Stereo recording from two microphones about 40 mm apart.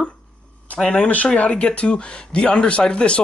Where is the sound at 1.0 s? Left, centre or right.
Left.